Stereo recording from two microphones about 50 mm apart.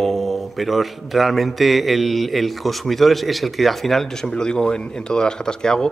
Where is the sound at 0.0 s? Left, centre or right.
Centre.